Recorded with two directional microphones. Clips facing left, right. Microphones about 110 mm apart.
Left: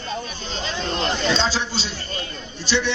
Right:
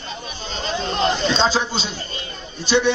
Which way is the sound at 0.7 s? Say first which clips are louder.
Right 4 dB; 20° right (ahead or behind).